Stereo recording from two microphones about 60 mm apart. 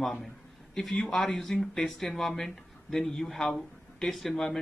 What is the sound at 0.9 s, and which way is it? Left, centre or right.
Speech, centre.